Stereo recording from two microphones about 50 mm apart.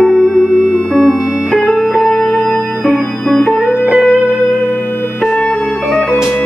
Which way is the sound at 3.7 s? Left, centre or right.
Centre.